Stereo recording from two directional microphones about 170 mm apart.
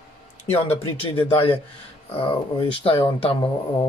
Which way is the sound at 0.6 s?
35° left (ahead or behind).